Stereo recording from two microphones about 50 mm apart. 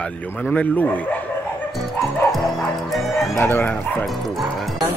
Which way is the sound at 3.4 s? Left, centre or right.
Left.